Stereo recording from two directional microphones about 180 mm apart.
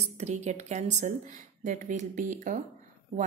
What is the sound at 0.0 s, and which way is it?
A woman's voice, 40° right (ahead or behind).